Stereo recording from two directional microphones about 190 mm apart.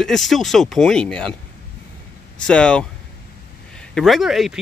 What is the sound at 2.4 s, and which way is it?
Speech, 5° left (ahead or behind).